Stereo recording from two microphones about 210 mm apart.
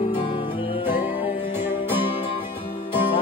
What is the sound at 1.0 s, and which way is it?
Music, 10° right (ahead or behind).